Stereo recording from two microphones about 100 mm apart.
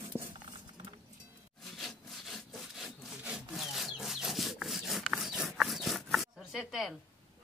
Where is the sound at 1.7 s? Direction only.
Centre (ahead or behind).